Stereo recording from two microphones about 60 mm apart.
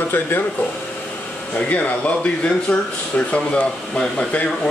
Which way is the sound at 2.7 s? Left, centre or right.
Centre.